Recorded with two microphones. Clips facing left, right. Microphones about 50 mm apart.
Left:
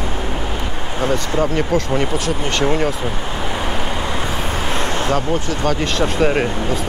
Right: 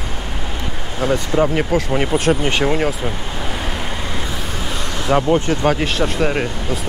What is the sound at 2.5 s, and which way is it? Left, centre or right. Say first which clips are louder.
Speech: even; centre.